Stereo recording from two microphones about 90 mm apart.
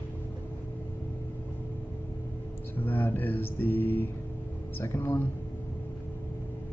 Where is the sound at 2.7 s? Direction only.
20° left (ahead or behind).